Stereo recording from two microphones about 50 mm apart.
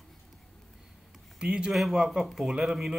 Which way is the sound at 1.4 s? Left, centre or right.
Centre.